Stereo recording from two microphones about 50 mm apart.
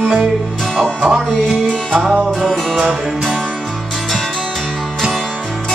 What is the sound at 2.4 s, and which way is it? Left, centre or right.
Music, centre.